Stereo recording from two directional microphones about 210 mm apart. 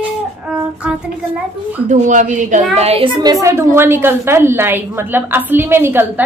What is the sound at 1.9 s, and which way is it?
Speech, 35° right (ahead or behind).